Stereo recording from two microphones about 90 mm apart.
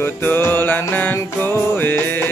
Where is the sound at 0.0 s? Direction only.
25° left (ahead or behind).